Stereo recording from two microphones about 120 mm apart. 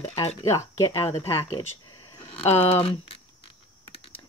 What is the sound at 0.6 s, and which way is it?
Speech, 25° left (ahead or behind).